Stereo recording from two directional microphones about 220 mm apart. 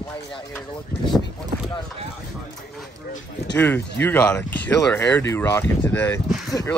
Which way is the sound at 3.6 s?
5° left (ahead or behind).